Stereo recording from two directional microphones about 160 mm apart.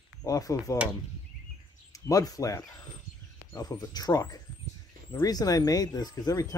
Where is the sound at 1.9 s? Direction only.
20° left (ahead or behind).